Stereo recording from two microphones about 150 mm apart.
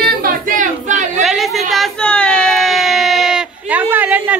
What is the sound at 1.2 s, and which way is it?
Speech, centre (ahead or behind).